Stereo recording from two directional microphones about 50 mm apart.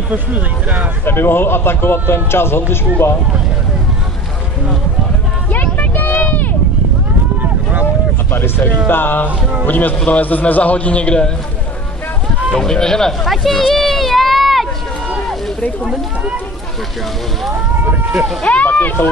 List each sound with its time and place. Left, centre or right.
0.1 s speech: right
1.0 s a man's voice: left
5.5 s a sound: left
8.3 s a man's voice: left
12.5 s speech: centre
18.4 s speech: left